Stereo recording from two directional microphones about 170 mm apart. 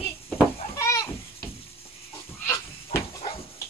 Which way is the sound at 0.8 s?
20° left (ahead or behind).